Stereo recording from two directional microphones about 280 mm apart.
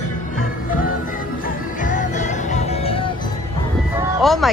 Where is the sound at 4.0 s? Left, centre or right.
Centre.